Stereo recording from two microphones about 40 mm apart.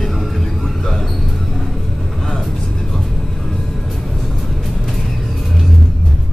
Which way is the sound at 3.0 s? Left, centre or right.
Centre.